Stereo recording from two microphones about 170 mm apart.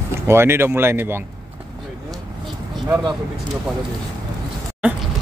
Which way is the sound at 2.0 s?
Centre (ahead or behind).